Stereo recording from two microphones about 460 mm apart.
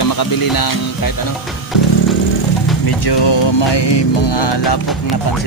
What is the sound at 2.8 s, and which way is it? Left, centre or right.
Music, left.